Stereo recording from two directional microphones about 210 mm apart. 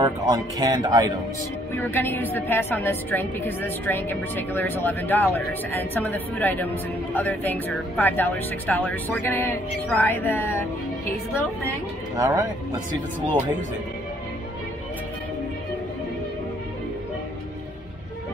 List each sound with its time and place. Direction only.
0.0 s speech: 20° right (ahead or behind)
1.8 s a woman's voice: 10° left (ahead or behind)
12.2 s speech: 15° right (ahead or behind)